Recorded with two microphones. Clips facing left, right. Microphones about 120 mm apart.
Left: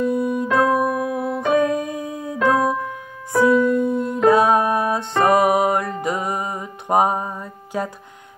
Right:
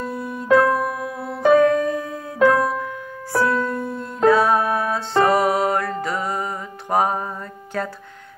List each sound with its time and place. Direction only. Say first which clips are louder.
0.2 s music: right 1 dB; 20° left (ahead or behind)